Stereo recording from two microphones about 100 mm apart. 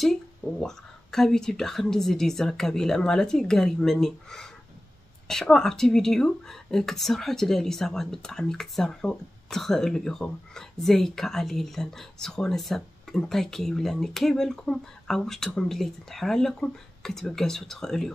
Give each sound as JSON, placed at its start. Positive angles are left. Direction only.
{"t": 0.0, "sound": "a woman's voice", "side_deg": 5}